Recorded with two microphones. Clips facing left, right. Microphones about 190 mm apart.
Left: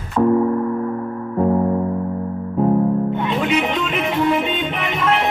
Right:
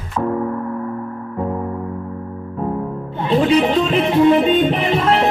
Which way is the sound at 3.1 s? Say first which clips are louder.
Right 4 dB; 35° right (ahead or behind).